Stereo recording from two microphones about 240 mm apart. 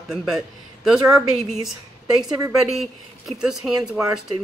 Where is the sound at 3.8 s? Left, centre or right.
Centre.